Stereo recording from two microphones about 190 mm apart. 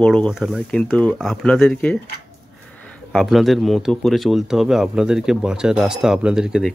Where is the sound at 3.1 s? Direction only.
Centre (ahead or behind).